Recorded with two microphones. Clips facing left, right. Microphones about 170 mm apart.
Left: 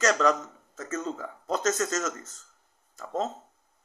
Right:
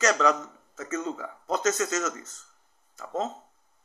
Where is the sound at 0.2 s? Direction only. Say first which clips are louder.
Even; 40° left (ahead or behind).